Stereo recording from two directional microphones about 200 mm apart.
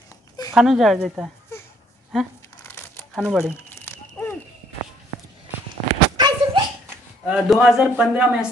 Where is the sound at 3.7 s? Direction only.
10° left (ahead or behind).